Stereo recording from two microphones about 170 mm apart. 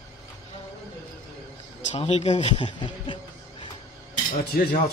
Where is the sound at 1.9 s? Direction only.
40° left (ahead or behind).